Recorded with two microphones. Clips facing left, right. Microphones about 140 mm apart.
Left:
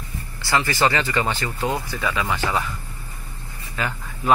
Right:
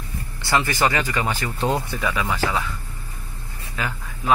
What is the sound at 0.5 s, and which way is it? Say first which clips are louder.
Speech: even; 20° right (ahead or behind).